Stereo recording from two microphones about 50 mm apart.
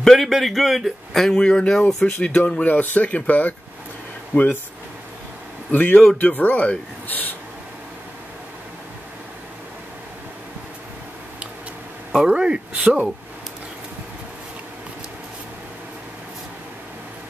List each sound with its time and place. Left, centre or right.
0.0 s speech: centre
1.3 s speech: centre
1.8 s speech: centre
2.1 s speech: left
5.7 s speech: left
12.1 s speech: centre